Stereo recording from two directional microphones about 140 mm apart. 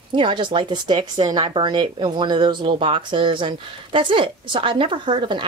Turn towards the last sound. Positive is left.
turn(degrees=-35)  # may be behind; listen again after turning